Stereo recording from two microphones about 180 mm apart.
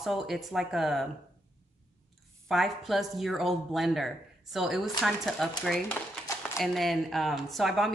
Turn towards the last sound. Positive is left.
turn(degrees=0)  # may be behind; listen again after turning